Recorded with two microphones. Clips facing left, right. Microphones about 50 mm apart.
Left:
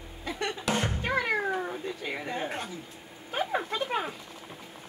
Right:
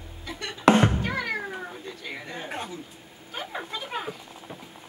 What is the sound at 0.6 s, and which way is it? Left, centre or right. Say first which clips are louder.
Music: right 12 dB; right.